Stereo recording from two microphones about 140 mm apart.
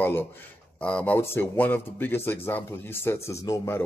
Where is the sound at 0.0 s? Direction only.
15° left (ahead or behind).